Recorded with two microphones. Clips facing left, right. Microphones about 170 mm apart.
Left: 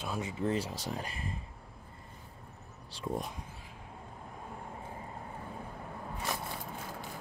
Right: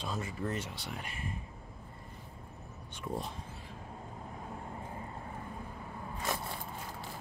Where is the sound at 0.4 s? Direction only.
30° left (ahead or behind).